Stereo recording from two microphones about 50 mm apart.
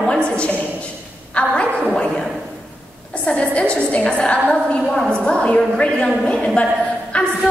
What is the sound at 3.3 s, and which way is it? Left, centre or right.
A woman's voice, left.